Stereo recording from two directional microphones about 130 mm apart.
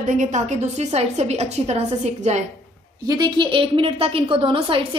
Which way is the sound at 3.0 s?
30° right (ahead or behind).